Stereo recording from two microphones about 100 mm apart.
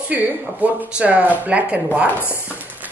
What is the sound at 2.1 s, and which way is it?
Speech, 20° left (ahead or behind).